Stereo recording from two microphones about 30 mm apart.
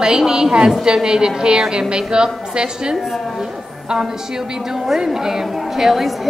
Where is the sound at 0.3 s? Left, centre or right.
Right.